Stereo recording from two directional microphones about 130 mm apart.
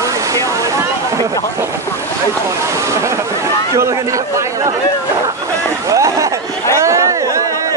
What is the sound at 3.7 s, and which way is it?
A man's voice, 25° right (ahead or behind).